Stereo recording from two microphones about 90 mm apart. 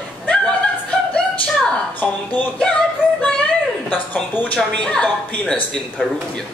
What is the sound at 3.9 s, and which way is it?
A woman's voice, 20° left (ahead or behind).